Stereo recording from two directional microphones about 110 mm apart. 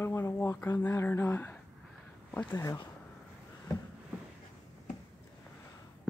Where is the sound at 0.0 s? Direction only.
25° left (ahead or behind).